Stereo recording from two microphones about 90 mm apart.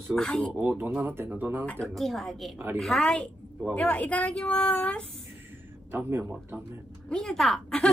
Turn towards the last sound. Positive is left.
turn(degrees=10)  # may be behind; listen again after turning